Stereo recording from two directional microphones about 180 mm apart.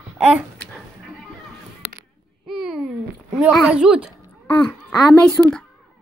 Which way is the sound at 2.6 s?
5° right (ahead or behind).